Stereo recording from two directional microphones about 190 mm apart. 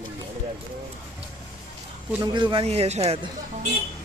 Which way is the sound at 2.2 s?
25° right (ahead or behind).